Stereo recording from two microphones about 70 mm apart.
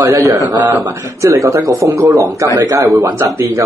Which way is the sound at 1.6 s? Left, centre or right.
Right.